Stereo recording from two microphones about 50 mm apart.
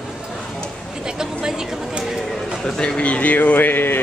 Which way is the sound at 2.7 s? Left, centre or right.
Centre.